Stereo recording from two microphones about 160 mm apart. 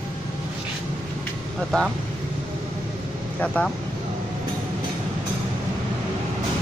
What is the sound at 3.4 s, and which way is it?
Speech, 5° left (ahead or behind).